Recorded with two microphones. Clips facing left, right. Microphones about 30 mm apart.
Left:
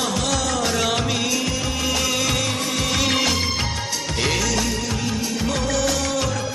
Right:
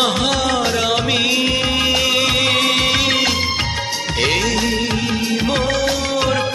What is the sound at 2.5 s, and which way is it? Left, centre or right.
Music, right.